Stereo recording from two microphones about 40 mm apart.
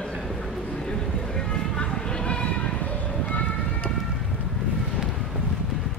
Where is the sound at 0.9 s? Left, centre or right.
Centre.